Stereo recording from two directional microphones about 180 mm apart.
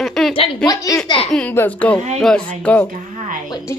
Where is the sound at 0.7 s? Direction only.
20° left (ahead or behind).